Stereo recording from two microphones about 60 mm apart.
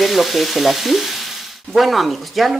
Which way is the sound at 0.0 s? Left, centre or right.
Centre.